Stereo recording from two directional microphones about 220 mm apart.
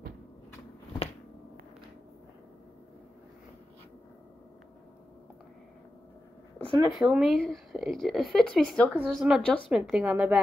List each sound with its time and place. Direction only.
6.8 s speech: 5° right (ahead or behind)